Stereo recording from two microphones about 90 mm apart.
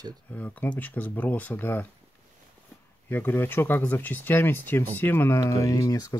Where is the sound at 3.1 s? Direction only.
20° left (ahead or behind).